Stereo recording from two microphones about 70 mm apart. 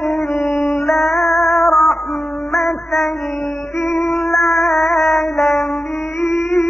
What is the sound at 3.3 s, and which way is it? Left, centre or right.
Music, left.